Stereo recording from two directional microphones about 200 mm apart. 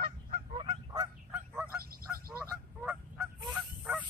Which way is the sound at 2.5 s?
5° right (ahead or behind).